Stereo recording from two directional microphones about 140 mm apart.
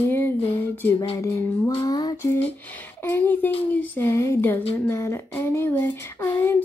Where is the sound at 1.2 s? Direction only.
20° left (ahead or behind).